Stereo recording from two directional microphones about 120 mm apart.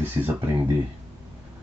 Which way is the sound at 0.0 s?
15° right (ahead or behind).